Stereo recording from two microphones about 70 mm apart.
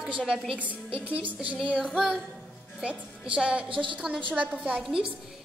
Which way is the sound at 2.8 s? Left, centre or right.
Centre.